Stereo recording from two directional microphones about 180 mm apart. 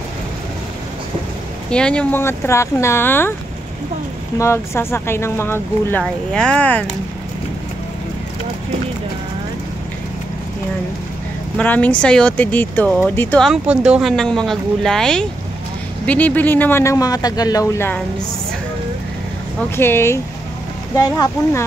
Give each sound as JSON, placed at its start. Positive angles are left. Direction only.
{"t": 1.7, "sound": "speech", "side_deg": 5}
{"t": 4.4, "sound": "speech", "side_deg": 15}
{"t": 11.5, "sound": "speech", "side_deg": 10}
{"t": 19.7, "sound": "speech", "side_deg": 15}